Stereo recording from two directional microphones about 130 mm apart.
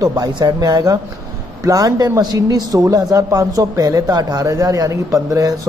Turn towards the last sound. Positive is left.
turn(degrees=-25)  # may be behind; listen again after turning